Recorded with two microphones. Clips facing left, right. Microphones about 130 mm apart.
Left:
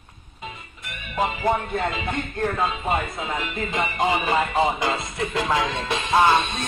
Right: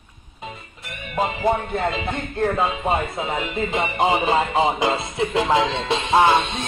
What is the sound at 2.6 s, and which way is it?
Speech, 25° right (ahead or behind).